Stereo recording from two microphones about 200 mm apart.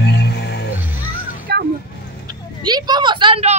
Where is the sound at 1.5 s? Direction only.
55° right (ahead or behind).